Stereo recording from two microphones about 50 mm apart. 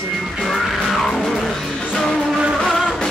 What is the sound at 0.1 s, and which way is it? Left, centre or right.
Music, centre.